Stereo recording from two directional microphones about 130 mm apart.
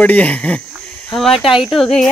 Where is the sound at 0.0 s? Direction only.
10° left (ahead or behind).